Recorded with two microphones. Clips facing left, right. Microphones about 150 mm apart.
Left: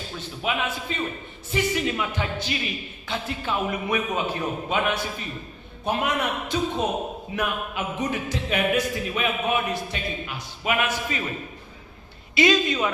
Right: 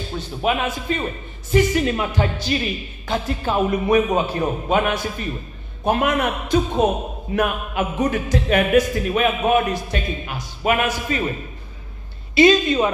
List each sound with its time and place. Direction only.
0.1 s a man's voice: 45° right (ahead or behind)
12.4 s a woman's voice: 35° right (ahead or behind)